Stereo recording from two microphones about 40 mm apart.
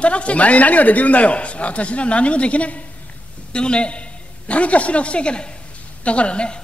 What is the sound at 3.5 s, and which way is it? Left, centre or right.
A man's voice, left.